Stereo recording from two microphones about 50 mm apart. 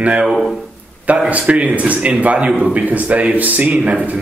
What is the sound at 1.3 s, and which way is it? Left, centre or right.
A man's voice, right.